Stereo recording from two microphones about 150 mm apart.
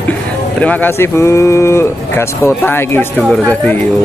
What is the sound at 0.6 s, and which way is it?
Speech, 10° left (ahead or behind).